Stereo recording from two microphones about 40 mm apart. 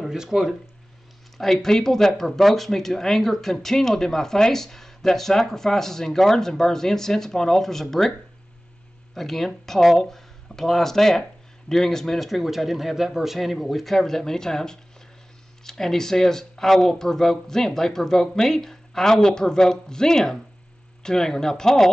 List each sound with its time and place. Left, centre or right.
0.0 s speech: centre
1.4 s speech: centre
9.1 s speech: centre